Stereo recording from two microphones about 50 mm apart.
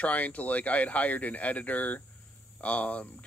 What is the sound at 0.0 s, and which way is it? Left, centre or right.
Speech, left.